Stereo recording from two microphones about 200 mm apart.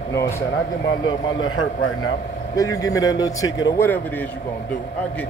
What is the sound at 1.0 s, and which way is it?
Speech, 70° left (ahead or behind).